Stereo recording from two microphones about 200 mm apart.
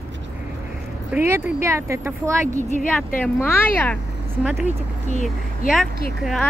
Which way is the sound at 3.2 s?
10° left (ahead or behind).